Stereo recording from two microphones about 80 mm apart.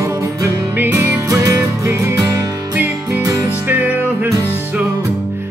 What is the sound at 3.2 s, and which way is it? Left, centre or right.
Music, right.